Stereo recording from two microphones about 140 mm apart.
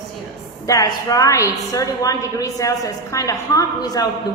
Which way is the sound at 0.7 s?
25° left (ahead or behind).